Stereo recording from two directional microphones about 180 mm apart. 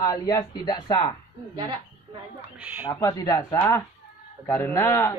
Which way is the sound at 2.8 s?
20° left (ahead or behind).